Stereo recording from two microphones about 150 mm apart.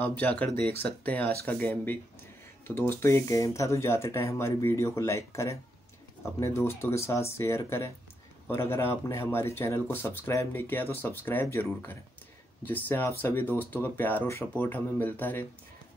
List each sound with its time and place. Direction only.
0.0 s speech: 10° left (ahead or behind)